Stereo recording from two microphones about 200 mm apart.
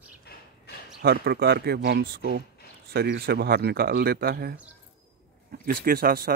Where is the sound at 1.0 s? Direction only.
55° right (ahead or behind).